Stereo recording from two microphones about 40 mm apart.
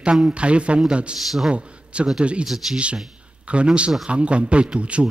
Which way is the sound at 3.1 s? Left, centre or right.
Right.